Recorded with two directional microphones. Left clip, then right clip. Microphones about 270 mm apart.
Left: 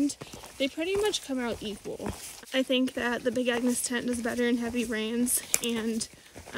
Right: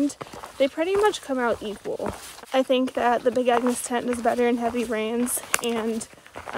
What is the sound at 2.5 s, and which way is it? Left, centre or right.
Speech, centre.